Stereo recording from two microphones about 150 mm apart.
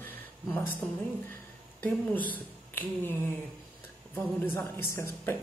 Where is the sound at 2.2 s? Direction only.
10° left (ahead or behind).